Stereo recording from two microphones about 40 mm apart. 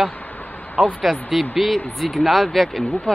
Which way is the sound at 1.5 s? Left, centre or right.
Centre.